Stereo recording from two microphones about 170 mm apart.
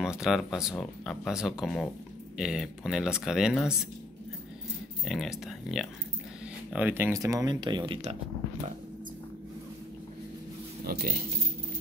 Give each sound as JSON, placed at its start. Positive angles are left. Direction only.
{"t": 0.0, "sound": "speech", "side_deg": -5}
{"t": 5.0, "sound": "speech", "side_deg": 0}
{"t": 10.9, "sound": "speech", "side_deg": -60}